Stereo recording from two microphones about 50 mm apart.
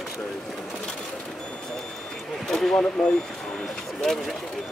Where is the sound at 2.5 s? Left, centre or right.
Centre.